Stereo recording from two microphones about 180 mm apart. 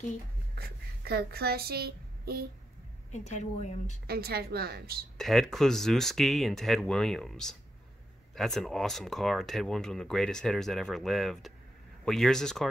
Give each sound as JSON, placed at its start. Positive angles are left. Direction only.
{"t": 0.6, "sound": "speech", "side_deg": -60}
{"t": 3.1, "sound": "speech", "side_deg": 40}
{"t": 4.1, "sound": "a woman's voice", "side_deg": -60}
{"t": 5.1, "sound": "speech", "side_deg": 0}